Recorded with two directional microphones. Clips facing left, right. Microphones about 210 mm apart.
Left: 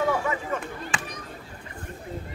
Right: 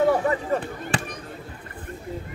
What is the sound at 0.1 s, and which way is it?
Chop, 35° right (ahead or behind).